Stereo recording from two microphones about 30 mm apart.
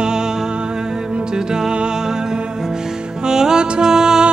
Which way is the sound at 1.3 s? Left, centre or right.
Right.